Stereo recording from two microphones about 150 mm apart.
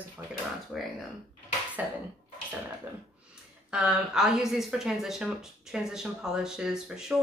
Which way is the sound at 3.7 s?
5° right (ahead or behind).